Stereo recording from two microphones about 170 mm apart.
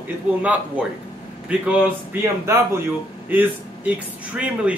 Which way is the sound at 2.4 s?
15° right (ahead or behind).